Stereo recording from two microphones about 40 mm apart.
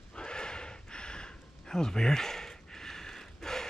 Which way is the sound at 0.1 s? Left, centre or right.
Left.